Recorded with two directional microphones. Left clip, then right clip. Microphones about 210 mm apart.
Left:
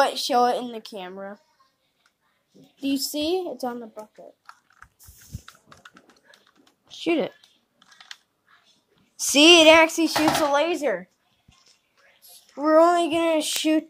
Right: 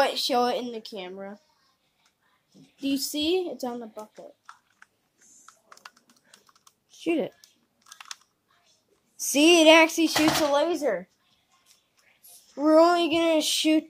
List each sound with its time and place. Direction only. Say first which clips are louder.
0.0 s speech: left 3 dB; centre (ahead or behind)
2.8 s speech: left 2 dB; 15° right (ahead or behind)
6.9 s speech: left 3 dB; 5° right (ahead or behind)
9.2 s speech: left 5 dB; 5° right (ahead or behind)
12.5 s speech: left 2 dB; 10° right (ahead or behind)